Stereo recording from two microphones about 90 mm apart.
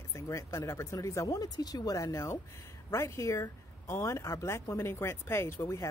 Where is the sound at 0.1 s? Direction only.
35° left (ahead or behind).